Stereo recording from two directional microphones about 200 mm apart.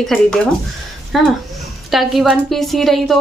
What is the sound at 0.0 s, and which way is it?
A woman's voice, centre (ahead or behind).